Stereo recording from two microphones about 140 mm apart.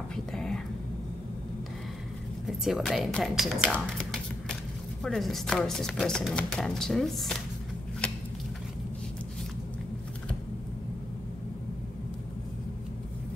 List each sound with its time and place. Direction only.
0.1 s whispering: 5° left (ahead or behind)
2.6 s chopping: centre (ahead or behind)
3.7 s music: 5° left (ahead or behind)
5.0 s chopping: 5° left (ahead or behind)